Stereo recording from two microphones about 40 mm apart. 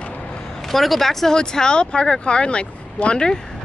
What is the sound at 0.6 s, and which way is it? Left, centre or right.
Speech, centre.